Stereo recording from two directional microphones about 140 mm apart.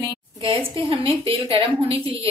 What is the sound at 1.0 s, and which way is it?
A woman's voice, 40° right (ahead or behind).